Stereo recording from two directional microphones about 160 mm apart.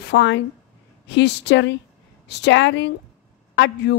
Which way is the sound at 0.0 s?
90° left.